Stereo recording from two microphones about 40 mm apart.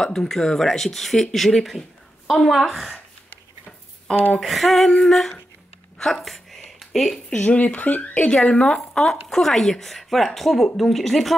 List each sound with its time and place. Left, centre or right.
0.0 s a woman's voice: centre
4.4 s a woman's voice: centre
6.1 s a sound: centre
7.2 s speech: left
8.5 s speech: left
8.9 s a woman's voice: centre